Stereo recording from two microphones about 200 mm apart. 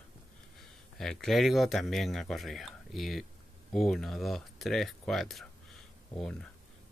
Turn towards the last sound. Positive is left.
turn(degrees=0)  # may be behind; listen again after turning